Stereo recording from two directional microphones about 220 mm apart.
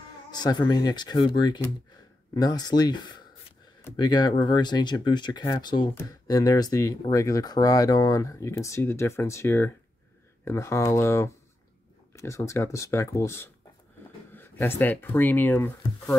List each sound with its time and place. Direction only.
0.3 s speech: 20° left (ahead or behind)
14.3 s a sound: 10° left (ahead or behind)
14.8 s speech: 10° left (ahead or behind)